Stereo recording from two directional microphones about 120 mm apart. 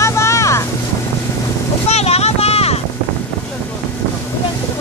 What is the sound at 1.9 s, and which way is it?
Boat, 60° left (ahead or behind).